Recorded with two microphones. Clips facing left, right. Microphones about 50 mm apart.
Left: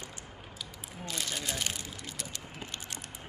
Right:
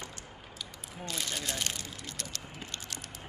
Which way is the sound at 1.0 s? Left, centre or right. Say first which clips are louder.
Even; centre.